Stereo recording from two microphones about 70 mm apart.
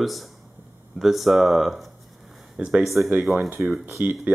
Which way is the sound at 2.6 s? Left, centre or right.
Centre.